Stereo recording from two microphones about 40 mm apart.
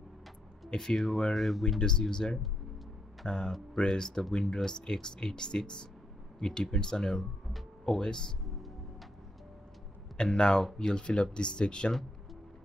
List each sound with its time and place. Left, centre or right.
0.7 s speech: centre
1.3 s speech: centre
1.8 s speech: centre
8.5 s music: centre
10.1 s speech: centre